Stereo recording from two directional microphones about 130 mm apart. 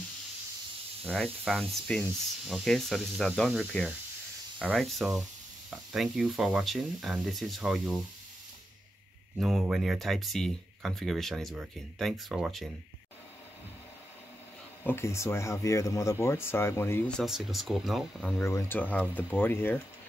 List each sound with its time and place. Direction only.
1.1 s speech: centre (ahead or behind)
9.4 s speech: centre (ahead or behind)
14.8 s speech: 15° left (ahead or behind)
17.2 s speech: centre (ahead or behind)
18.4 s speech: 20° left (ahead or behind)